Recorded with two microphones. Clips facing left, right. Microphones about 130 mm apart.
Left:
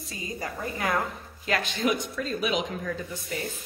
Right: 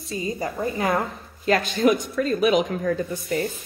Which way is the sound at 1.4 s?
40° right (ahead or behind).